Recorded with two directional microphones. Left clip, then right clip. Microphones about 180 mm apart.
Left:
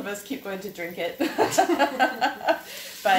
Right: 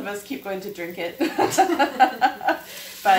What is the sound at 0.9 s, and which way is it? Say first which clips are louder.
Speech: right 1 dB; 15° left (ahead or behind).